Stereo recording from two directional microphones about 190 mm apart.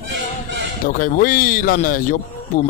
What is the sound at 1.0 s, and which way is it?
A man's voice, 45° left (ahead or behind).